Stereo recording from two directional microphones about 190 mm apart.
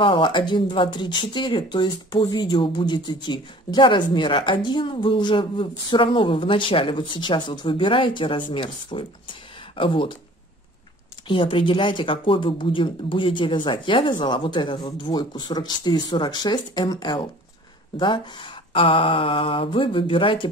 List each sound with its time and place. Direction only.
0.0 s speech: 25° left (ahead or behind)
11.2 s speech: 25° left (ahead or behind)